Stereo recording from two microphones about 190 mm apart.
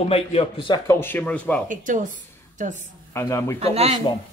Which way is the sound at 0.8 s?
10° left (ahead or behind).